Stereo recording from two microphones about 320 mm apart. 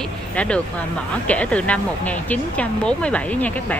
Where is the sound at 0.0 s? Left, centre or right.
Centre.